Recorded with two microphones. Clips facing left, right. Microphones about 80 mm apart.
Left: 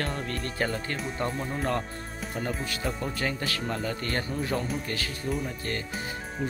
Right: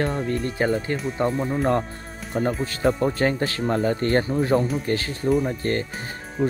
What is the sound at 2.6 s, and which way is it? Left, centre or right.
Speech, right.